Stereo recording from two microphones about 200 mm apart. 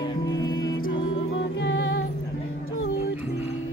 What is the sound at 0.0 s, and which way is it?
Music, 20° left (ahead or behind).